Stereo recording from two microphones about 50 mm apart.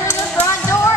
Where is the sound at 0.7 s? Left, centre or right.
Left.